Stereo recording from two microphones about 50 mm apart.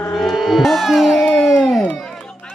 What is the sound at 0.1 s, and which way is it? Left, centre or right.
Music, centre.